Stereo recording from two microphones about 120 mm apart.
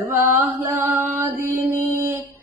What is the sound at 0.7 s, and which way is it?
Mantra, 20° right (ahead or behind).